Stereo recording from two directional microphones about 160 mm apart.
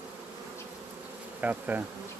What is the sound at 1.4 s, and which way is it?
Bee, 10° right (ahead or behind).